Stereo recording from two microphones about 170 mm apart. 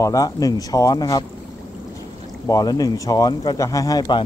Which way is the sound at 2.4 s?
20° left (ahead or behind).